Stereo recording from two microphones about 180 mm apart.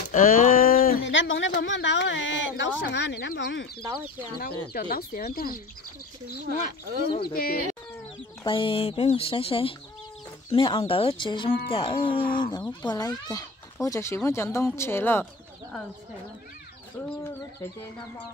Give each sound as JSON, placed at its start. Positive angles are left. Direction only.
{"t": 0.1, "sound": "a sound", "side_deg": 50}
{"t": 1.0, "sound": "speech", "side_deg": 90}
{"t": 4.4, "sound": "speech", "side_deg": 55}
{"t": 7.1, "sound": "speech", "side_deg": 25}
{"t": 7.3, "sound": "speech", "side_deg": 55}
{"t": 8.5, "sound": "speech", "side_deg": 30}